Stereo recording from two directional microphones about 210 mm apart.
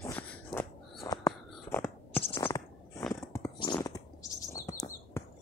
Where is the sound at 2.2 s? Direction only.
25° left (ahead or behind).